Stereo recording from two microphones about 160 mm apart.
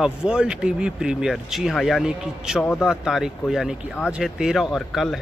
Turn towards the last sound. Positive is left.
turn(degrees=0)  # may be behind; listen again after turning